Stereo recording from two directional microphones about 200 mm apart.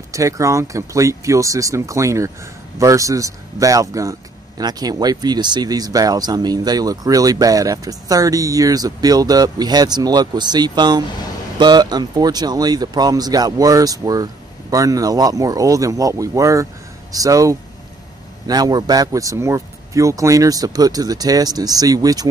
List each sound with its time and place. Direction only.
0.1 s speech: 15° right (ahead or behind)